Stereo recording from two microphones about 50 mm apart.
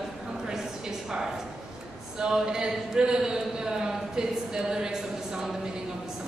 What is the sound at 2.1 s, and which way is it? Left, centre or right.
Speech, centre.